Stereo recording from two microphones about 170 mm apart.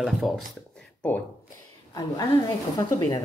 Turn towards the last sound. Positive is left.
turn(degrees=20)  # may be behind; listen again after turning